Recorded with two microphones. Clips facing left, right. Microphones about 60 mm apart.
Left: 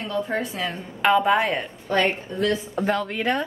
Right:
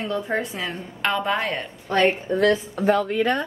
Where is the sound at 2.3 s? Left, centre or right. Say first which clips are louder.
Right 5 dB; right.